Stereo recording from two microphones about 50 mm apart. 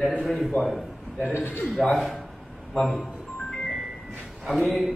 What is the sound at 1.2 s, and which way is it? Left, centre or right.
Speech, left.